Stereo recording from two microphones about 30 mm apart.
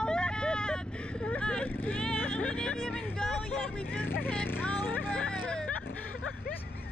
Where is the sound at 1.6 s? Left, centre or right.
Left.